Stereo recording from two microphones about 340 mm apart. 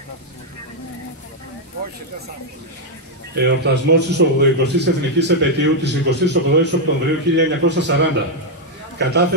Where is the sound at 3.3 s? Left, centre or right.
Right.